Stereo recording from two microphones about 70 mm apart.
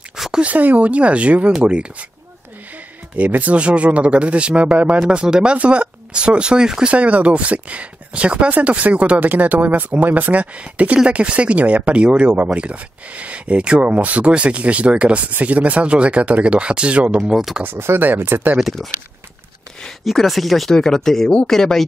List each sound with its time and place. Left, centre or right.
0.1 s a sound: centre
0.4 s speech: right
3.2 s speech: right
17.4 s speech: centre
17.6 s speech: right
18.6 s speech: centre
20.1 s speech: centre